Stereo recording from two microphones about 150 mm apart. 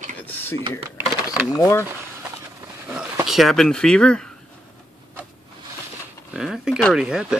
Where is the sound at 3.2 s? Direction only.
Centre (ahead or behind).